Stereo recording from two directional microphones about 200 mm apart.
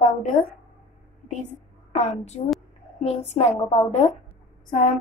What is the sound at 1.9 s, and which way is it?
A woman's voice, 35° left (ahead or behind).